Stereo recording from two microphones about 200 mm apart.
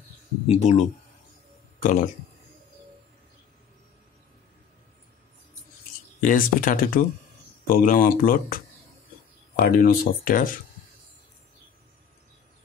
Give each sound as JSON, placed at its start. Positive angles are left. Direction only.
{"t": 0.5, "sound": "speech", "side_deg": 35}
{"t": 6.2, "sound": "speech", "side_deg": 40}
{"t": 9.6, "sound": "speech", "side_deg": 50}